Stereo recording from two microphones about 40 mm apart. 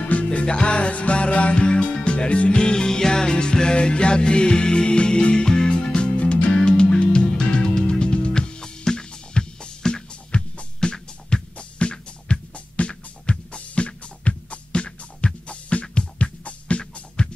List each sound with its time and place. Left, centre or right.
0.0 s music: left
5.9 s music: left
6.5 s music: left